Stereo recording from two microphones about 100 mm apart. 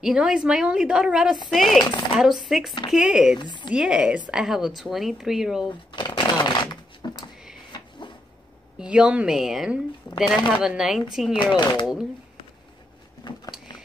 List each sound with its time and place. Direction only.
0.0 s a woman's voice: 5° right (ahead or behind)
3.3 s speech: 50° left (ahead or behind)
3.7 s a woman's voice: 5° right (ahead or behind)
5.9 s shuffling cards: 45° left (ahead or behind)
8.7 s a woman's voice: 10° right (ahead or behind)
11.5 s speech: 50° left (ahead or behind)
11.8 s speech: 5° right (ahead or behind)